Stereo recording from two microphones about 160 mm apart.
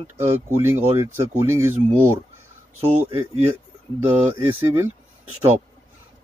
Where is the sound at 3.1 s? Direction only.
45° right (ahead or behind).